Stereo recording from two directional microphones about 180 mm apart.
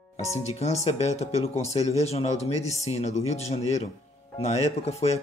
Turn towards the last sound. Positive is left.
turn(degrees=35)  # may be behind; listen again after turning